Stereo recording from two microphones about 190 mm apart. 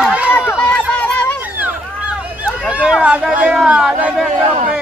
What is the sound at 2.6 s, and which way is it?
Speech, 5° right (ahead or behind).